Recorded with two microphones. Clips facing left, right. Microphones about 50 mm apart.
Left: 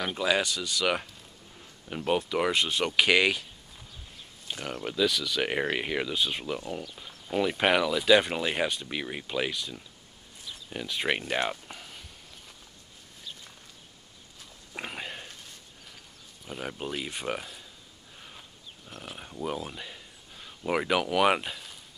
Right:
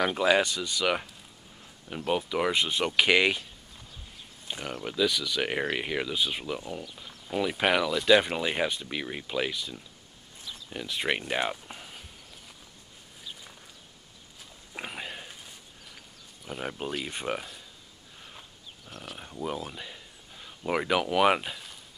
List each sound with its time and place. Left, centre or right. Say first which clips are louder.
0.0 s speech: right 4 dB; centre
0.8 s speech: right 1 dB; centre
2.5 s speech: even; centre
4.5 s speech: left 1 dB; centre
14.7 s a sound: even; centre
16.4 s speech: right 1 dB; centre
18.9 s speech: even; left
19.1 s speech: even; centre